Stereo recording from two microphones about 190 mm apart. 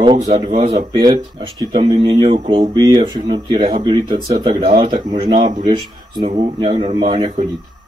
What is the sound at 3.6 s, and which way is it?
Speech, 40° right (ahead or behind).